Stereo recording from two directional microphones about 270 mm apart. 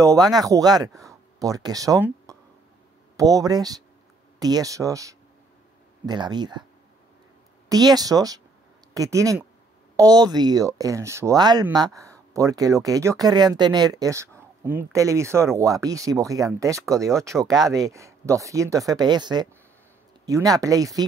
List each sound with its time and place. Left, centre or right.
0.0 s speech: centre
7.7 s speech: centre